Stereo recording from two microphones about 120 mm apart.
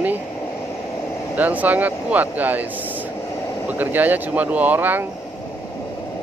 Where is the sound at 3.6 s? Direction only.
15° right (ahead or behind).